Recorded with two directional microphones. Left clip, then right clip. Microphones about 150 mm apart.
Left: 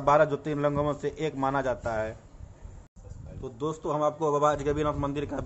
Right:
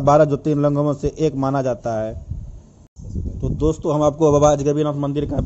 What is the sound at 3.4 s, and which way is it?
Speech, 55° right (ahead or behind).